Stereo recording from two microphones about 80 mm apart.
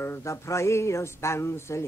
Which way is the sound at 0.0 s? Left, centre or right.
Left.